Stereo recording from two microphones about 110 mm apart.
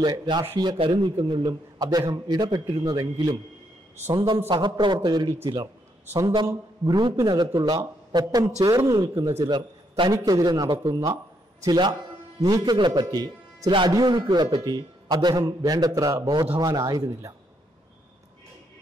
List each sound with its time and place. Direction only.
0.0 s a man's voice: 40° right (ahead or behind)
9.4 s a man's voice: 45° right (ahead or behind)
12.7 s a man's voice: 45° right (ahead or behind)